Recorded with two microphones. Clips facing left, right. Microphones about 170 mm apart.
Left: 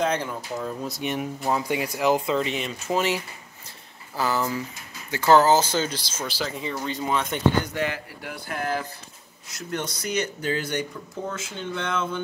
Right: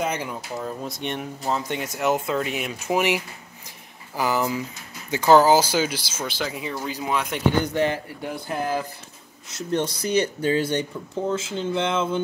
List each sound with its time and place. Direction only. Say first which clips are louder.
0.0 s speech: left 2 dB; 10° right (ahead or behind)
3.6 s a sound: right 2 dB; 15° right (ahead or behind)
5.1 s speech: right 2 dB; 15° right (ahead or behind)
7.7 s speech: right 5 dB; 25° right (ahead or behind)